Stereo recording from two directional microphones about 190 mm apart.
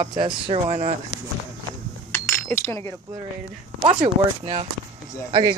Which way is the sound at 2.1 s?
10° left (ahead or behind).